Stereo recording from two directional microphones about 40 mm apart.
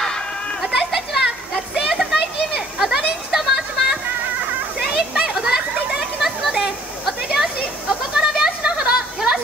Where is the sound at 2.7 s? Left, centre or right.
Centre.